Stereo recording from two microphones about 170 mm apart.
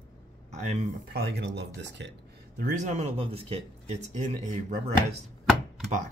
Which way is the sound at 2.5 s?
45° right (ahead or behind).